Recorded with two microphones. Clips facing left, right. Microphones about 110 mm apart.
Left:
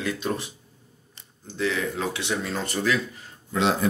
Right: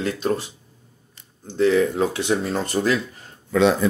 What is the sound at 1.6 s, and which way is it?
Speech, 45° right (ahead or behind).